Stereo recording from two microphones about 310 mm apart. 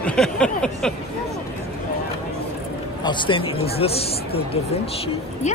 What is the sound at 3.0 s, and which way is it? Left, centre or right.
Speech, centre.